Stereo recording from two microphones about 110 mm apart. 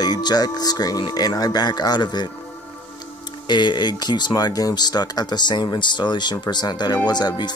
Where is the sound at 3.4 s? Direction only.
40° left (ahead or behind).